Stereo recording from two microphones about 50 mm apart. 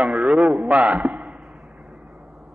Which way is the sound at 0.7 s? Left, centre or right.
Right.